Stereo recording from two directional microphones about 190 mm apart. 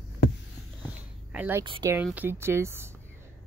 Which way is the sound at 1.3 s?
10° right (ahead or behind).